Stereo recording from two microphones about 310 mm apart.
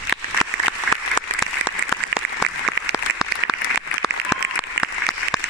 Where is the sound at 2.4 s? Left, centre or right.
Right.